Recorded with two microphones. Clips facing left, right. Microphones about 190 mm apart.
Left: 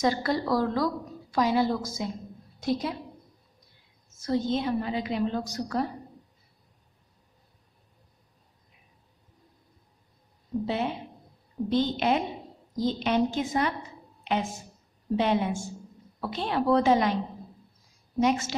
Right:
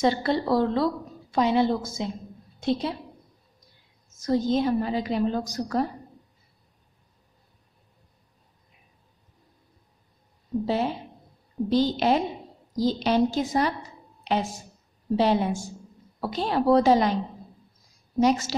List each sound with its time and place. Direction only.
0.0 s a woman's voice: 25° right (ahead or behind)
4.2 s a woman's voice: 40° right (ahead or behind)
10.6 s a woman's voice: 35° right (ahead or behind)
18.2 s a woman's voice: 35° right (ahead or behind)